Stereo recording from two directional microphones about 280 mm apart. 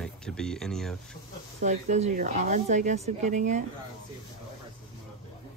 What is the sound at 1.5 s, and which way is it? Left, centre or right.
Speech, right.